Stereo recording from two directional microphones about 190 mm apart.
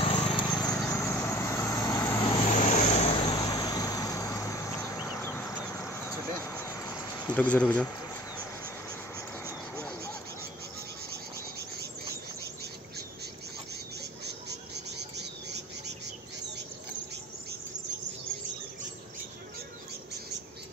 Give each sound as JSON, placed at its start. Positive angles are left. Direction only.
{"t": 0.0, "sound": "horse", "side_deg": 30}
{"t": 0.7, "sound": "vehicle", "side_deg": 15}
{"t": 2.7, "sound": "vehicle", "side_deg": 35}
{"t": 7.3, "sound": "speech", "side_deg": 5}
{"t": 9.4, "sound": "vehicle", "side_deg": 15}
{"t": 14.2, "sound": "bird", "side_deg": -60}